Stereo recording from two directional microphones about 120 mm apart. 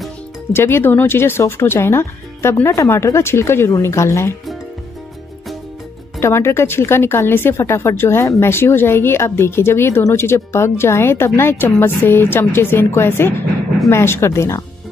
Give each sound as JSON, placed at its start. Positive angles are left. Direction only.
{"t": 0.5, "sound": "a woman's voice", "side_deg": 20}
{"t": 6.1, "sound": "a woman's voice", "side_deg": 20}